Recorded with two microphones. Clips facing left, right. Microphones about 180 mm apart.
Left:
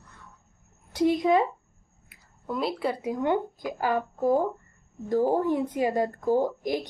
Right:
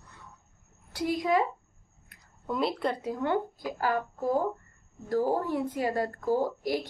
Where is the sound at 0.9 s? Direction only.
20° left (ahead or behind).